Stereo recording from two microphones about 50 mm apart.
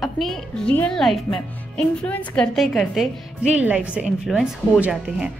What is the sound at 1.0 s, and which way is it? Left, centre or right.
A woman's voice, centre.